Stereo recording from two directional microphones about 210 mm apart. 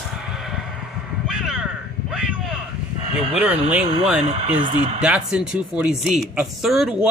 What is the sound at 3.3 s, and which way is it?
Speech, 5° right (ahead or behind).